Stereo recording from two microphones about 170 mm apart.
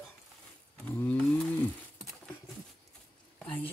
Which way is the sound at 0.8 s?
10° left (ahead or behind).